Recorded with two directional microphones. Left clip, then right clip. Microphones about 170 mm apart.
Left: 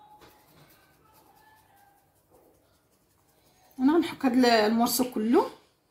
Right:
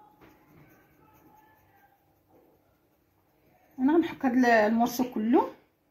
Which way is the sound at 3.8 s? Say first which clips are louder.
Left 1 dB; 15° right (ahead or behind).